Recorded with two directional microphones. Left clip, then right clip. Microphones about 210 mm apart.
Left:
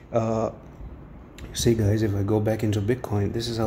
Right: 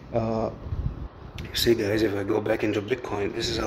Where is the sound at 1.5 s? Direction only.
5° right (ahead or behind).